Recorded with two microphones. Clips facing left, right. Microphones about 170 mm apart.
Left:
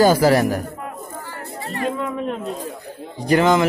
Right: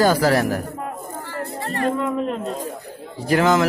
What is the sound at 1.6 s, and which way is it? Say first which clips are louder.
Music: right 2 dB; 55° right (ahead or behind).